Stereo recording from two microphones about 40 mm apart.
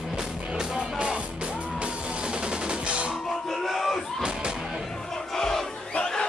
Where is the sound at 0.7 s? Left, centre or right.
Right.